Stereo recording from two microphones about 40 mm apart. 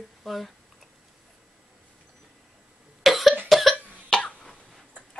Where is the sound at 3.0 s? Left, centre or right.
Centre.